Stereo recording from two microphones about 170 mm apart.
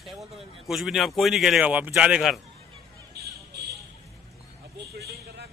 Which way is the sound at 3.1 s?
70° right (ahead or behind).